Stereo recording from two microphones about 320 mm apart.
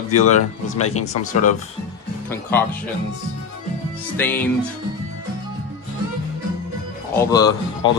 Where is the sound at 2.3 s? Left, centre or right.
Centre.